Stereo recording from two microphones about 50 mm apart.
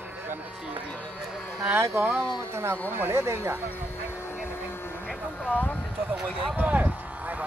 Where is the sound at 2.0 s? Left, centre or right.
Right.